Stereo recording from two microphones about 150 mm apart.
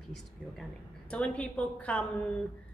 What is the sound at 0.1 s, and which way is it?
Speech, 5° left (ahead or behind).